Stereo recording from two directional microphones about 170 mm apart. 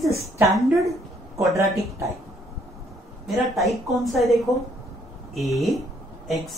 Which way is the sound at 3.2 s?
Centre (ahead or behind).